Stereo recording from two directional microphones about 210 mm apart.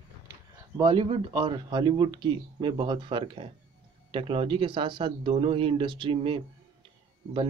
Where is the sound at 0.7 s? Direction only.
25° right (ahead or behind).